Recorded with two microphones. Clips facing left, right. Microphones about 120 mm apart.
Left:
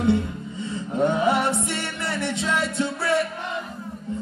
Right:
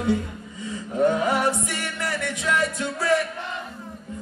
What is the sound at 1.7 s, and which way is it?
Music, 25° left (ahead or behind).